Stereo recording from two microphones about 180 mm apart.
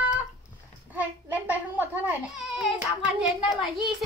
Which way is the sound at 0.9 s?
10° right (ahead or behind).